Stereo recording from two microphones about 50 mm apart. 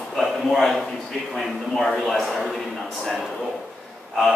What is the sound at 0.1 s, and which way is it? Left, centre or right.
A man's voice, centre.